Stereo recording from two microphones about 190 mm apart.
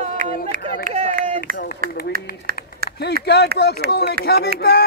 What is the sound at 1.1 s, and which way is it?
Run, 45° right (ahead or behind).